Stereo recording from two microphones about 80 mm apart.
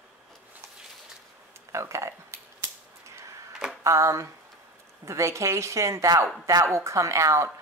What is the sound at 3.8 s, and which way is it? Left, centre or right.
Speech, right.